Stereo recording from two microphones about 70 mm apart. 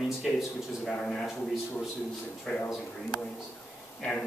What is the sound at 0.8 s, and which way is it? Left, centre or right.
Speech, centre.